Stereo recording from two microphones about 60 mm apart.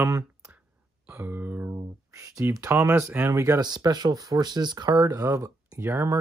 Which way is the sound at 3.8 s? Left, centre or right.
Right.